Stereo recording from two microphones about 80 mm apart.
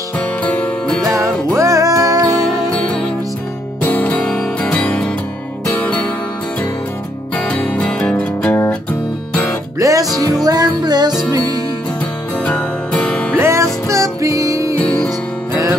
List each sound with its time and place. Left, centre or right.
0.4 s music: centre
1.6 s music: right
2.2 s music: centre
3.8 s music: centre
7.3 s music: centre
9.8 s music: right
12.5 s music: centre
13.4 s music: right
14.8 s music: centre